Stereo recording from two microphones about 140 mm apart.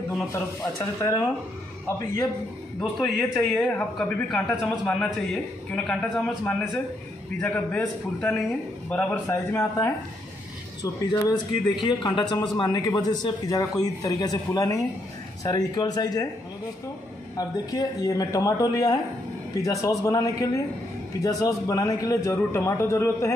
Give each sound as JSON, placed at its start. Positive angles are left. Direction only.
{"t": 0.3, "sound": "a man's voice", "side_deg": 20}
{"t": 2.8, "sound": "a man's voice", "side_deg": 5}
{"t": 10.8, "sound": "a man's voice", "side_deg": 30}
{"t": 17.4, "sound": "a man's voice", "side_deg": 25}